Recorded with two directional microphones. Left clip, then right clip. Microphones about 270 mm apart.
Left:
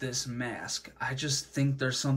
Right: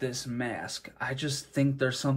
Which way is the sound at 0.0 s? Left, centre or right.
Centre.